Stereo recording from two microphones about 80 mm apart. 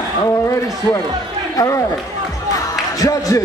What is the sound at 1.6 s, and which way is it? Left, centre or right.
Speech, left.